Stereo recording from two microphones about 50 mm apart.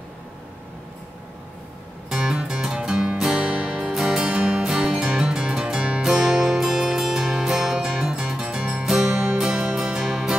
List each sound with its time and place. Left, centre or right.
2.1 s music: centre
3.9 s music: centre
4.2 s music: right